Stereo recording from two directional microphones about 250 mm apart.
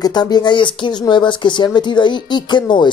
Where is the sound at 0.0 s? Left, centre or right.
Centre.